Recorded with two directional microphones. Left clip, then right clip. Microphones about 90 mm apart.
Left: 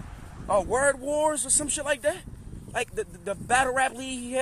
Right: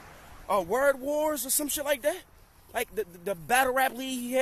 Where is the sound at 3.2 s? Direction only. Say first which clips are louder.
Left 1 dB; 40° right (ahead or behind).